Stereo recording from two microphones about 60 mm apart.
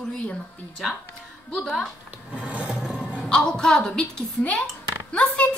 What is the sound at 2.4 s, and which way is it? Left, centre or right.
Filing, right.